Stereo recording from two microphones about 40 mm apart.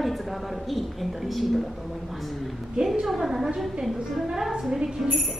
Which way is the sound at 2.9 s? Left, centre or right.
Centre.